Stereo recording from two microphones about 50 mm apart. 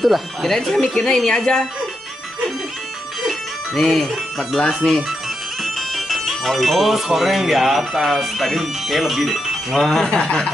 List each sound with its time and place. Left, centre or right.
0.0 s speech: centre
3.3 s music: centre
4.8 s speech: centre
5.6 s speech: centre